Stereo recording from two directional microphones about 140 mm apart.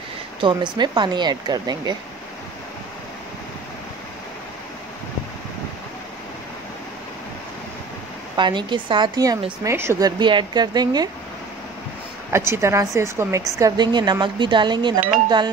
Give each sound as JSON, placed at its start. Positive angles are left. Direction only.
{"t": 0.4, "sound": "speech", "side_deg": -35}
{"t": 8.4, "sound": "a woman's voice", "side_deg": -35}
{"t": 12.3, "sound": "a woman's voice", "side_deg": -20}